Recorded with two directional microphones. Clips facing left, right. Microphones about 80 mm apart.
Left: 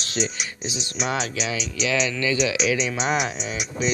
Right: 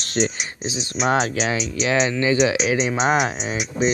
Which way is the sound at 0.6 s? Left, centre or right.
Right.